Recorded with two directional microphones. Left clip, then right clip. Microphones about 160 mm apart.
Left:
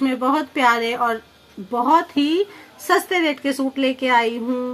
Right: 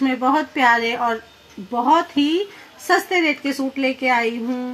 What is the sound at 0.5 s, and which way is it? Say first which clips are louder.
A woman's voice: left 1 dB; 10° left (ahead or behind).